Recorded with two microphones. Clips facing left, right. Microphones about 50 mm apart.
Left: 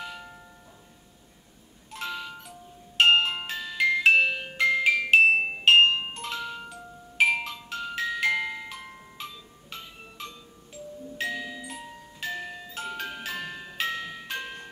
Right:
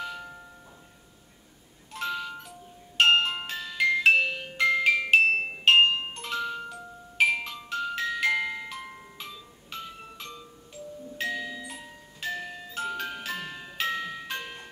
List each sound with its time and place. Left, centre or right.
0.0 s music: centre
1.9 s music: centre
5.2 s music: centre
11.1 s glockenspiel: centre